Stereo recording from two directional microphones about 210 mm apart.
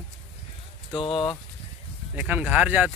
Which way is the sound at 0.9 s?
20° left (ahead or behind).